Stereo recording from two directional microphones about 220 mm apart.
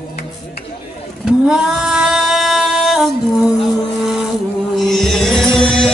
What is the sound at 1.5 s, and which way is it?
Female singing, 5° right (ahead or behind).